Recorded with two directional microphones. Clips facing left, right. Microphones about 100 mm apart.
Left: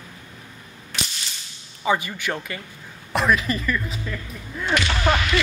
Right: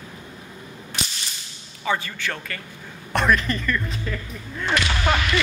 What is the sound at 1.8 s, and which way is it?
Speech, 15° left (ahead or behind).